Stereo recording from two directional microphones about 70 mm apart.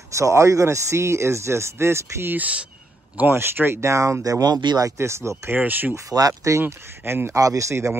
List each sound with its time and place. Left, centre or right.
0.1 s speech: right
2.3 s speech: right
3.2 s speech: right
3.8 s speech: right
4.8 s speech: right
5.5 s speech: right
6.0 s speech: right
6.6 s speech: right
7.2 s speech: right